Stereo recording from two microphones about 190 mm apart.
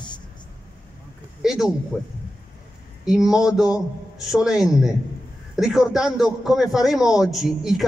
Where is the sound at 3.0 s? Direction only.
5° right (ahead or behind).